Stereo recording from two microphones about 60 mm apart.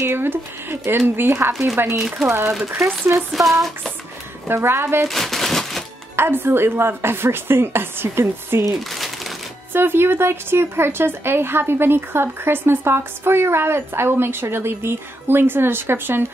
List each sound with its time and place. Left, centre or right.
0.0 s speech: right
2.0 s speech: centre
2.2 s speech: right
3.3 s a sound: centre
4.5 s speech: right
5.0 s a sound: centre
6.1 s speech: right
8.7 s crumpling: centre
9.7 s speech: right